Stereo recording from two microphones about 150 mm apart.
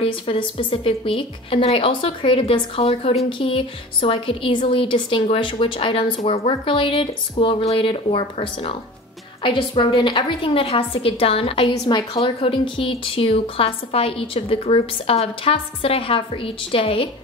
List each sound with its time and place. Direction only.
0.0 s a woman's voice: 35° left (ahead or behind)